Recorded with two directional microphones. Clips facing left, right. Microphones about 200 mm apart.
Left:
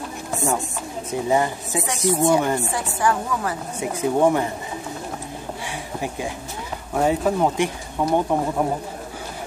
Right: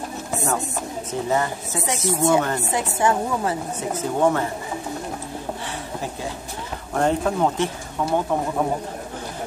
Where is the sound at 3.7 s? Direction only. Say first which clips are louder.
Left 6 dB; 15° left (ahead or behind).